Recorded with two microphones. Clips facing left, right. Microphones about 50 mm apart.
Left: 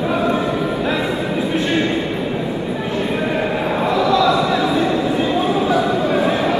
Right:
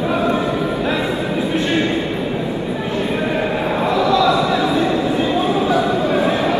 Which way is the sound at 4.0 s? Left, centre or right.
Left.